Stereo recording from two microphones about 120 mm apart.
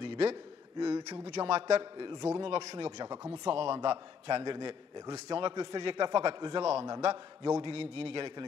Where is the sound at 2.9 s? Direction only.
35° right (ahead or behind).